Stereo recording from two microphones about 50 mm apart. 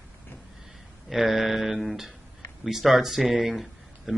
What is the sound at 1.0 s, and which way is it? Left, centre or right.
Speech, centre.